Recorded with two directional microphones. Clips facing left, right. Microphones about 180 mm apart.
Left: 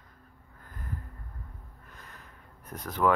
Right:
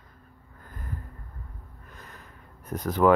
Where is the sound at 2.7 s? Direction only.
35° right (ahead or behind).